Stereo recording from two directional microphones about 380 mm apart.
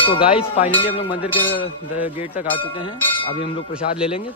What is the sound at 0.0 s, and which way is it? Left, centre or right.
Speech, centre.